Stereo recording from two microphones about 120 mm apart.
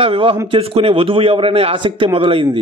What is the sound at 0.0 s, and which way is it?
A man's voice, 50° right (ahead or behind).